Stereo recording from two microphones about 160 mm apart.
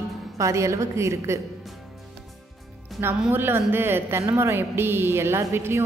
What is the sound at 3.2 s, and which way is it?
A woman's voice, 15° right (ahead or behind).